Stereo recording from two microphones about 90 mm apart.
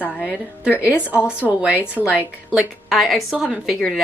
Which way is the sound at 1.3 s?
10° right (ahead or behind).